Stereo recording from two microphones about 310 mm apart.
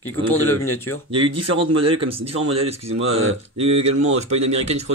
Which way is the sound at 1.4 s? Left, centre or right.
Right.